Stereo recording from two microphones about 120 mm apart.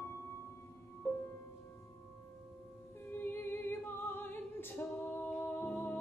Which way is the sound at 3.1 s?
20° left (ahead or behind).